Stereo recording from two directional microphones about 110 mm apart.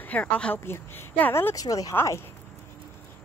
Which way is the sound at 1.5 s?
35° left (ahead or behind).